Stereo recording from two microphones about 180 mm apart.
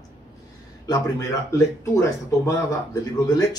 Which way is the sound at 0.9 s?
20° left (ahead or behind).